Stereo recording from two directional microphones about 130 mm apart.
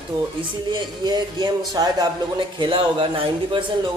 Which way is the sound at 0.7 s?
35° right (ahead or behind).